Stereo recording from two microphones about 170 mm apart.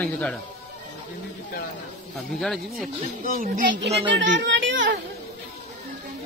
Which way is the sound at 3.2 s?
55° right (ahead or behind).